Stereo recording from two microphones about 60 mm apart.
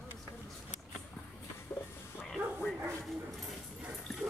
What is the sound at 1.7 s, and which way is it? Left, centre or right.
Music, left.